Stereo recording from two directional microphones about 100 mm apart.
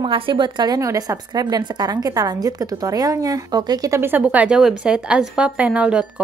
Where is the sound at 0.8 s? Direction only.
35° right (ahead or behind).